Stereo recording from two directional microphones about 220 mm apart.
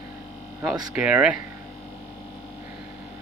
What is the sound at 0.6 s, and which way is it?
Speech, 15° right (ahead or behind).